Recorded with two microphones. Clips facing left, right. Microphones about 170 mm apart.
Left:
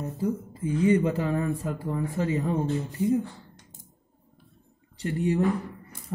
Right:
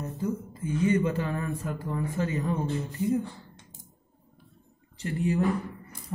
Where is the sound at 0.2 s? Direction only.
35° left (ahead or behind).